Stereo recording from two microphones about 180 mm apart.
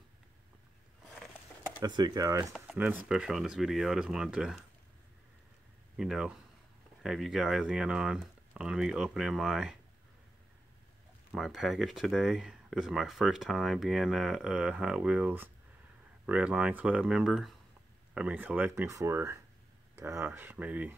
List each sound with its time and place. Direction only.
1.8 s speech: 25° right (ahead or behind)
2.8 s speech: 10° right (ahead or behind)
5.9 s speech: 5° right (ahead or behind)
11.3 s speech: centre (ahead or behind)